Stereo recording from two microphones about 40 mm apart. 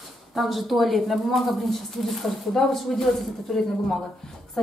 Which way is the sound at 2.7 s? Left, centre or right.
Centre.